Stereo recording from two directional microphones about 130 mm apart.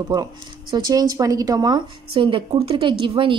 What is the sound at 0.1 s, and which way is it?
Speech, 35° right (ahead or behind).